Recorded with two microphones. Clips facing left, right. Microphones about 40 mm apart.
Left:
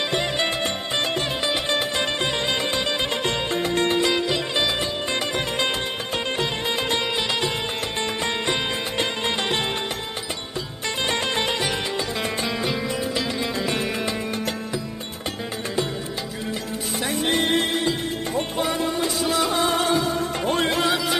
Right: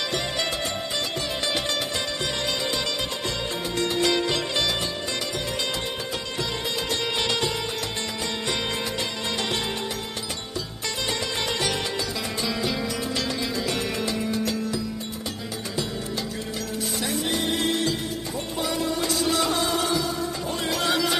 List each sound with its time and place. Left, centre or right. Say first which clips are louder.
1.4 s music: left 2 dB; left
4.3 s music: left 2 dB; centre
6.3 s music: left 3 dB; left
8.2 s music: left 3 dB; left
11.1 s music: left 5 dB; left
17.0 s music: left 5 dB; left
17.6 s music: left 1 dB; left
19.2 s music: left 2 dB; centre
19.6 s music: left 4 dB; left
20.8 s music: left 1 dB; centre